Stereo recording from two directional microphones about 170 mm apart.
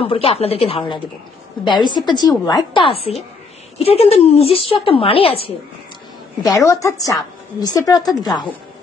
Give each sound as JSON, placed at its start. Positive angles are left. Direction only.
{"t": 0.0, "sound": "a woman's voice", "side_deg": 35}
{"t": 6.4, "sound": "a woman's voice", "side_deg": 20}